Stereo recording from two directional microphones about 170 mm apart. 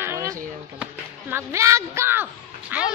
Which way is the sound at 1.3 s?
15° right (ahead or behind).